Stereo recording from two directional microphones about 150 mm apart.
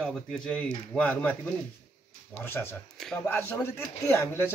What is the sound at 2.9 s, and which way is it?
Speech, 5° left (ahead or behind).